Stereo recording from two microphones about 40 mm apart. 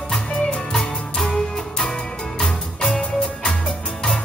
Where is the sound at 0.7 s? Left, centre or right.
Centre.